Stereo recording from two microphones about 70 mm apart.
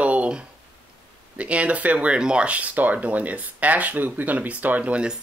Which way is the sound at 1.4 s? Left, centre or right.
Centre.